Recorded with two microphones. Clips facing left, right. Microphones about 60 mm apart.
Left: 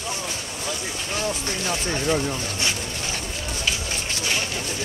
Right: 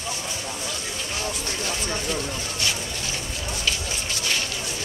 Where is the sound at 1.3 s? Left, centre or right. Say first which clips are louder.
Left 3 dB; left.